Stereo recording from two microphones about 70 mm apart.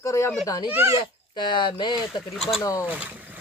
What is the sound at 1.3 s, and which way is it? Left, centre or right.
Speech, left.